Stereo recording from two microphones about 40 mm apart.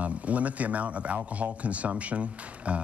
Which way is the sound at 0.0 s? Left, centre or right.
Right.